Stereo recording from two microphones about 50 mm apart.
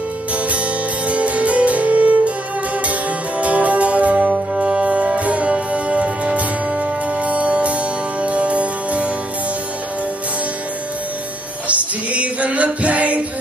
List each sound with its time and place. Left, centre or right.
0.3 s music: right
11.6 s music: right